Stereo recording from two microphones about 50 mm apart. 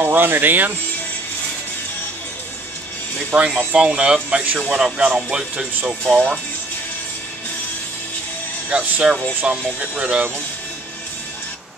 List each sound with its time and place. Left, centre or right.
0.0 s speech: right
3.5 s speech: right
4.4 s speech: right
6.1 s speech: right
8.6 s speech: right
9.3 s speech: right
9.8 s speech: right